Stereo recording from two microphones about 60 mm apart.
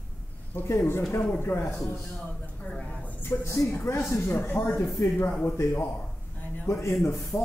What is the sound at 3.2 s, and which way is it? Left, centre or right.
A man's voice, left.